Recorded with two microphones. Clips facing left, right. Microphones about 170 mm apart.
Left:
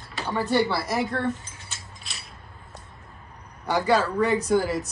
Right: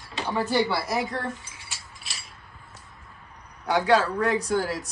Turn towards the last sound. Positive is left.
turn(degrees=0)  # may be behind; listen again after turning